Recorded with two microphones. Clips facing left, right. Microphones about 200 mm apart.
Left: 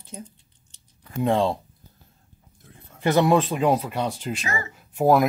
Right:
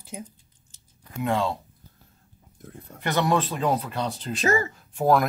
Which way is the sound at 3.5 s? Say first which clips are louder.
Left 4 dB; 10° left (ahead or behind).